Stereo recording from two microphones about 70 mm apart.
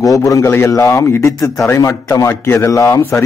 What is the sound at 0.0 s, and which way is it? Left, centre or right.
A man's voice, left.